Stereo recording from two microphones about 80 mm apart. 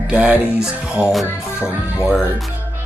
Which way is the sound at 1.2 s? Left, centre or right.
Left.